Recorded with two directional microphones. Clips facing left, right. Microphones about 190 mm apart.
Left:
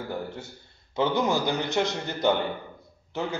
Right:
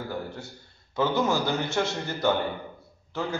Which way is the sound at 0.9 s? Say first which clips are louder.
Even; 15° left (ahead or behind).